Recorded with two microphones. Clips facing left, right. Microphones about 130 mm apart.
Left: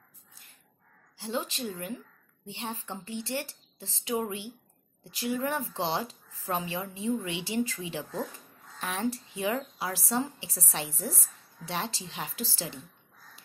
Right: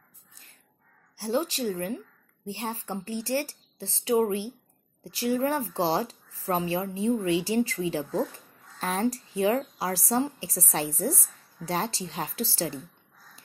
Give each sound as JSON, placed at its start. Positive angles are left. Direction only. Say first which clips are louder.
{"t": 1.1, "sound": "a woman's voice", "louder": "right 6 dB", "side_deg": -35}